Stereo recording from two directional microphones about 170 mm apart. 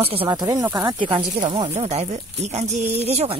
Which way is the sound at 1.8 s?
40° right (ahead or behind).